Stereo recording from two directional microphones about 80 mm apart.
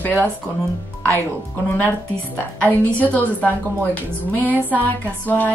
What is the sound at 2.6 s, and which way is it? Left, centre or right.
A woman's voice, left.